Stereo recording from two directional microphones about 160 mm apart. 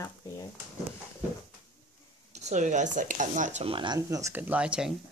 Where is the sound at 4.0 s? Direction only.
20° right (ahead or behind).